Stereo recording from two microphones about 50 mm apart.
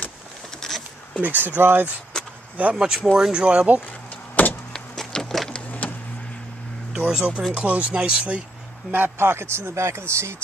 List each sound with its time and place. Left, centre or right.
0.6 s a sound: centre
1.2 s speech: right
2.7 s speech: centre
4.4 s a sound: left
4.7 s power windows: centre
5.7 s vehicle: left
7.1 s speech: centre
8.9 s speech: right